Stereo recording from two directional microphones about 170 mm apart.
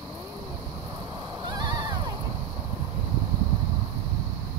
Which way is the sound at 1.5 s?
25° right (ahead or behind).